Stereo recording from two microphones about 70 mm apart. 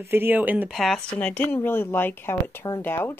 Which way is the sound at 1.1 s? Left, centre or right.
Centre.